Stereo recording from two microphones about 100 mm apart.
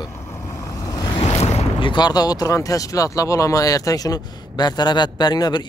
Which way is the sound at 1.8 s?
50° left (ahead or behind).